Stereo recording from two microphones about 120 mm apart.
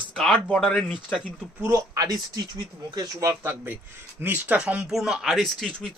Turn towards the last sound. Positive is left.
turn(degrees=0)  # may be behind; listen again after turning